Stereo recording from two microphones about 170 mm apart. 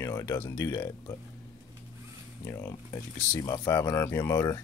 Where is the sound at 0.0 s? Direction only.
20° left (ahead or behind).